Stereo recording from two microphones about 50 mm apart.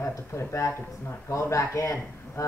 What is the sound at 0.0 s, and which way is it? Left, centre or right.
Speech, left.